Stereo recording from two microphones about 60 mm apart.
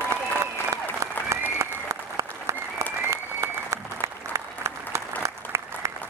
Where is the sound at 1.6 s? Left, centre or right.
Right.